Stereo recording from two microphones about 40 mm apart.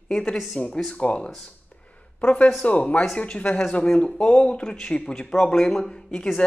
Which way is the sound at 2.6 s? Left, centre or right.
Left.